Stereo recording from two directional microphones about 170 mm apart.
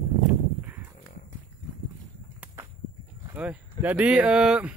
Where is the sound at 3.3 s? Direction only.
10° right (ahead or behind).